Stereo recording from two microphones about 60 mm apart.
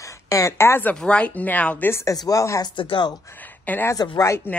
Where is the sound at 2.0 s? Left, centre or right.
Left.